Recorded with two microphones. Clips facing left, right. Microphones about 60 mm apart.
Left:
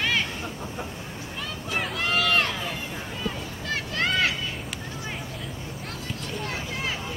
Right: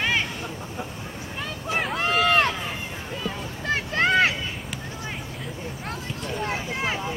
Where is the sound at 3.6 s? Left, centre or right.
Right.